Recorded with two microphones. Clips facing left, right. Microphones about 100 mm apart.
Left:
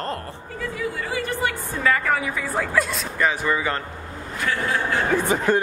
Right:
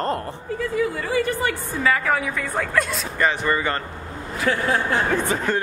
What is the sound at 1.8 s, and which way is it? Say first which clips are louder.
A man's voice: even; centre (ahead or behind).